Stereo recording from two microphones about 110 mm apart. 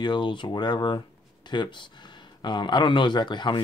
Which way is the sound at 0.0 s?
45° left (ahead or behind).